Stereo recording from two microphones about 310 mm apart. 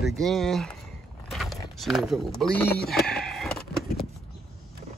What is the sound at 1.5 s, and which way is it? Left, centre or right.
Speech, centre.